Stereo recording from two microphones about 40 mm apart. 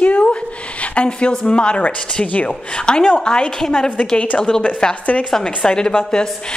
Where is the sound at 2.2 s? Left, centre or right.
Left.